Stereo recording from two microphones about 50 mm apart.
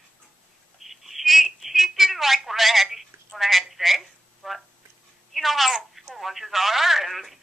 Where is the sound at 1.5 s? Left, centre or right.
Centre.